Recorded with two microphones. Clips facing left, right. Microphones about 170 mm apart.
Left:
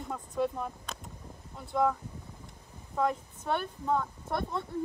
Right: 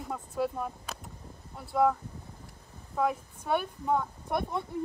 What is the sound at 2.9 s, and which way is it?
Speech, 5° right (ahead or behind).